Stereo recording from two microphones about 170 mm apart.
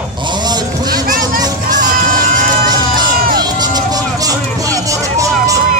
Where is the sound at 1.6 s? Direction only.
50° right (ahead or behind).